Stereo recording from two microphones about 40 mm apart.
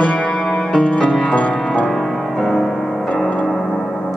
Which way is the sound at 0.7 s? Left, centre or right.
Left.